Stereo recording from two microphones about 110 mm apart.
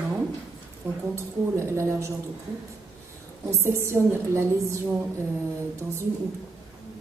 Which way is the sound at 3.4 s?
25° right (ahead or behind).